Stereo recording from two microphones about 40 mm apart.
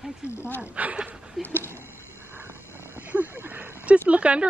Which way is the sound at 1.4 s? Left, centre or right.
Centre.